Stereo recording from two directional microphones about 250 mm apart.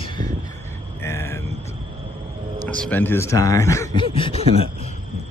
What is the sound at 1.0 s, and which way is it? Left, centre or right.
Vehicle, centre.